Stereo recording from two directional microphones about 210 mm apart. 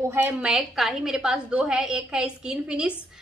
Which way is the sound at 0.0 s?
10° right (ahead or behind).